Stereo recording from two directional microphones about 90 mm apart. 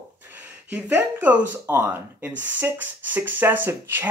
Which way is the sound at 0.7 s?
15° right (ahead or behind).